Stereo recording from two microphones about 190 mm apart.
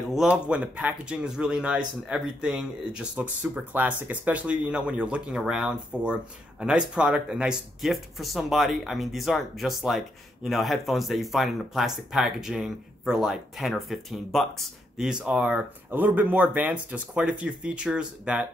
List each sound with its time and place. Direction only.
0.1 s speech: 5° right (ahead or behind)